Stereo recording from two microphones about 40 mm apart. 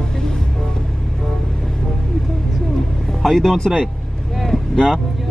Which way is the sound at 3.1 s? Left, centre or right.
Centre.